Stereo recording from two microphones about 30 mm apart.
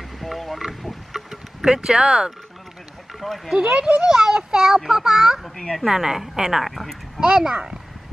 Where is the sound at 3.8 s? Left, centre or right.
Right.